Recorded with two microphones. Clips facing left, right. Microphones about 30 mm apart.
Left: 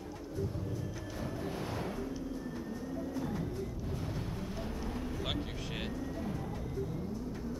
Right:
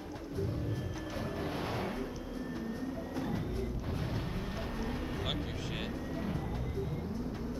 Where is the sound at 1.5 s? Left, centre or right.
Right.